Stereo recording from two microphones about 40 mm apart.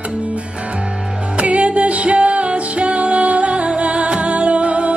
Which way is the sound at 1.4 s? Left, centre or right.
Right.